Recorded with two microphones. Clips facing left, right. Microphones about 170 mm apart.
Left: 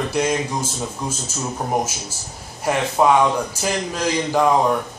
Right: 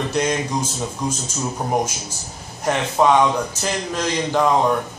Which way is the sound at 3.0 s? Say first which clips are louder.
Even; 5° left (ahead or behind).